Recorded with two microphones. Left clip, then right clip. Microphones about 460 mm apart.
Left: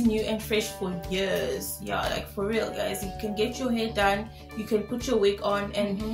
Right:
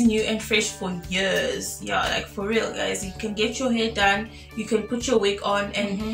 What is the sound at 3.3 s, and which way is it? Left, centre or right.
Speech, left.